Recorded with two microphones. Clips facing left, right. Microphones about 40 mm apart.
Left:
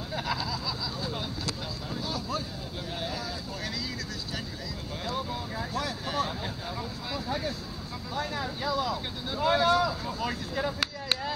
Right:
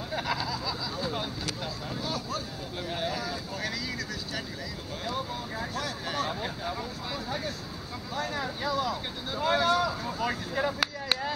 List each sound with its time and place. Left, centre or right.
0.1 s a sound: centre
2.9 s vehicle: centre
5.0 s vehicle: centre
7.2 s speech: centre